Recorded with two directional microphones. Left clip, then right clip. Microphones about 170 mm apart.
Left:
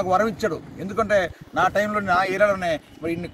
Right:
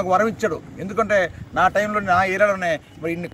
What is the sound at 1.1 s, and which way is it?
Speech, 20° left (ahead or behind).